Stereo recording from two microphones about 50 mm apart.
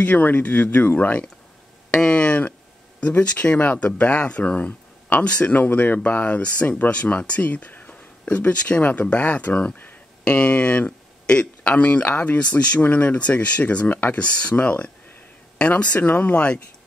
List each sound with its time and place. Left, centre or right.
0.0 s speech: left
1.9 s a sound: left
3.1 s speech: left
9.8 s a sound: left
11.7 s speech: left
16.0 s speech: left
16.3 s speech: left